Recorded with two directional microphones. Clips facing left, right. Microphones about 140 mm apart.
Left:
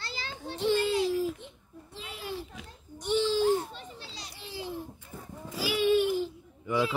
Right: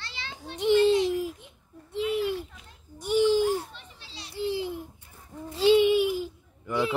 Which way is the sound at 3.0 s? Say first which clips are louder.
Right 3 dB; 15° right (ahead or behind).